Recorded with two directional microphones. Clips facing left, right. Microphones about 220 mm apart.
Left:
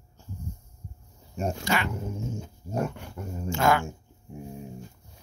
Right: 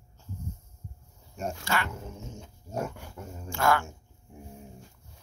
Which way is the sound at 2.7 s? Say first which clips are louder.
Left 4 dB; 15° left (ahead or behind).